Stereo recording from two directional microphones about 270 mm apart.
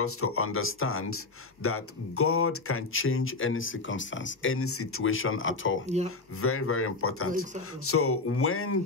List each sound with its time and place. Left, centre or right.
0.0 s speech: left